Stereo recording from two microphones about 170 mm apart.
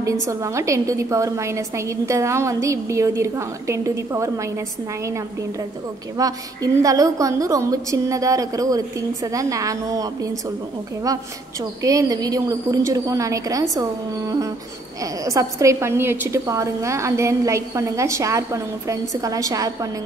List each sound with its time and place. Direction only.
0.0 s a woman's voice: 20° right (ahead or behind)
6.1 s a woman's voice: 20° right (ahead or behind)
11.8 s a woman's voice: 20° right (ahead or behind)